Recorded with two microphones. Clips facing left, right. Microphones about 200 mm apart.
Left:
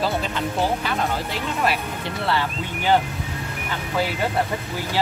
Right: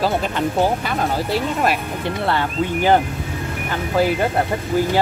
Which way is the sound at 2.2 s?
50° right (ahead or behind).